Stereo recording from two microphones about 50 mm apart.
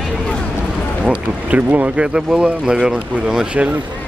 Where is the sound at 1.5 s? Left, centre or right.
Right.